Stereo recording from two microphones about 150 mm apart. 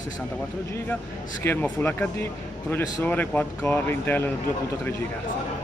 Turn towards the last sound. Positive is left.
turn(degrees=15)  # may be behind; listen again after turning